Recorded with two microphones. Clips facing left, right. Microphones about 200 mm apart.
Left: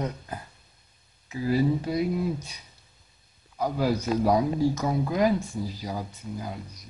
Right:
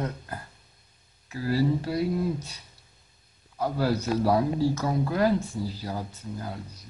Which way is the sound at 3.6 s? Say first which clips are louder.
Left 1 dB; 15° left (ahead or behind).